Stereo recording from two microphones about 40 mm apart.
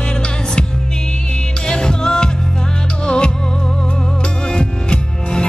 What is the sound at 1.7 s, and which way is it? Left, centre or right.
Music, centre.